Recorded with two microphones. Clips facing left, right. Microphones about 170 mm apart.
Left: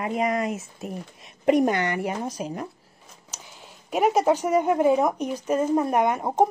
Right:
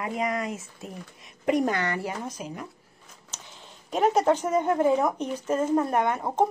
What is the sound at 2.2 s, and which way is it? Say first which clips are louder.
Speech: left 5 dB; 35° left (ahead or behind).